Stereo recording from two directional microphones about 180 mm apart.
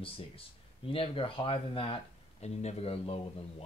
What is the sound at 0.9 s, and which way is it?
Speech, 30° left (ahead or behind).